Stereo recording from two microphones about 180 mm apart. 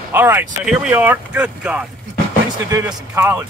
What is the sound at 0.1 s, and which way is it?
Speech, 10° right (ahead or behind).